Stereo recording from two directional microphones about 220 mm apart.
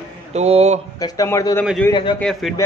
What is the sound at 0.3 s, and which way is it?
Speech, 30° right (ahead or behind).